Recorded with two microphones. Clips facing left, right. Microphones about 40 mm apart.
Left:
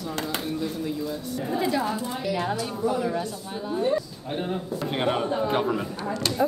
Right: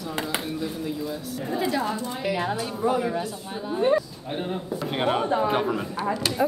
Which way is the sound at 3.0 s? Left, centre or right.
Centre.